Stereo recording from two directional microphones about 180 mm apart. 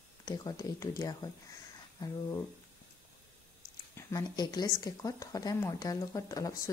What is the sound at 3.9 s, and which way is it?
A woman's voice, 20° left (ahead or behind).